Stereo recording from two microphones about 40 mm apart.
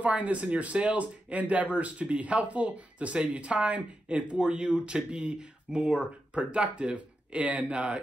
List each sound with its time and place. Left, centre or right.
0.0 s speech: right
4.4 s speech: right